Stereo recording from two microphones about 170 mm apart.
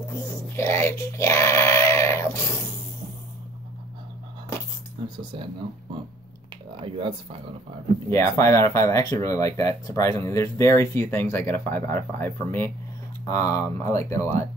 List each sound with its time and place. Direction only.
0.6 s speech: 15° left (ahead or behind)
6.8 s speech: 30° right (ahead or behind)
8.1 s speech: 15° left (ahead or behind)